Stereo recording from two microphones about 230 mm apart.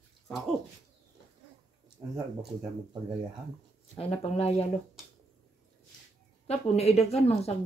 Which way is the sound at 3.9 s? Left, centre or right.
Left.